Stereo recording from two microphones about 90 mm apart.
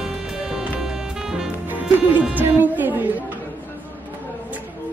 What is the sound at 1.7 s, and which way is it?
Music, 20° right (ahead or behind).